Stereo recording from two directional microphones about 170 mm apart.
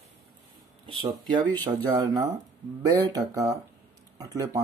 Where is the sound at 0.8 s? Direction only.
25° right (ahead or behind).